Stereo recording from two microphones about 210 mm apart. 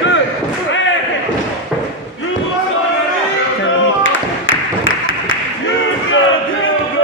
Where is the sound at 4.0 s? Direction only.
65° left (ahead or behind).